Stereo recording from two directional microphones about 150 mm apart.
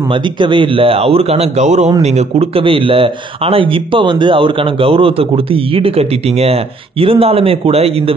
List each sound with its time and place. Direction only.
0.1 s speech: 30° right (ahead or behind)